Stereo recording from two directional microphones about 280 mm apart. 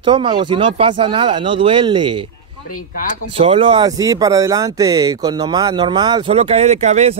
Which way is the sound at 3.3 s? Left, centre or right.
Centre.